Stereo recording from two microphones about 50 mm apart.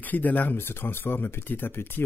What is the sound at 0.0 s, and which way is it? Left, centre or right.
Speech, left.